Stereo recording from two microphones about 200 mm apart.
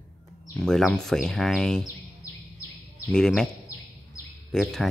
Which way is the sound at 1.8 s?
15° left (ahead or behind).